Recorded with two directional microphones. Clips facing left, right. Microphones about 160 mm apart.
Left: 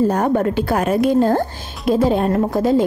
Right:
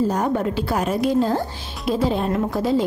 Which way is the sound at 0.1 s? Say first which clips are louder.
Left 4 dB; 55° left (ahead or behind).